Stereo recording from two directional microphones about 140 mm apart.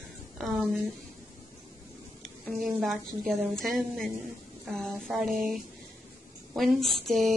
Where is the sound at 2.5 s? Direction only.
Centre (ahead or behind).